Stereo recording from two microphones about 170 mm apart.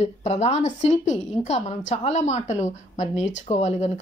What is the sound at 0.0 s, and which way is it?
A woman's voice, 40° left (ahead or behind).